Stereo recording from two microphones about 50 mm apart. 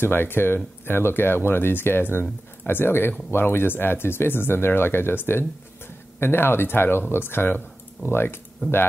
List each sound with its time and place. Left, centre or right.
0.0 s speech: left